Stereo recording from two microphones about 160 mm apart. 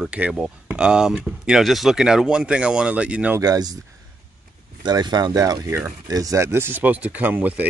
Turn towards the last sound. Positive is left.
turn(degrees=-10)  # may be behind; listen again after turning